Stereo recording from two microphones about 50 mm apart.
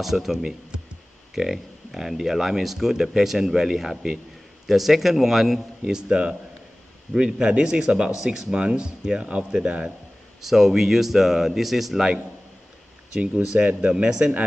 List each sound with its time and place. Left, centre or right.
0.0 s speech: centre
5.9 s speech: centre
10.4 s speech: centre
13.2 s speech: right